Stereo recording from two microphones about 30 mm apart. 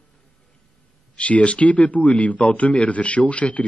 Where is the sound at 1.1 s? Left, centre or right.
Left.